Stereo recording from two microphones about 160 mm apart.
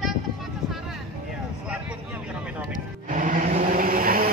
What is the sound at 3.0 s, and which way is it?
Vehicle, 55° right (ahead or behind).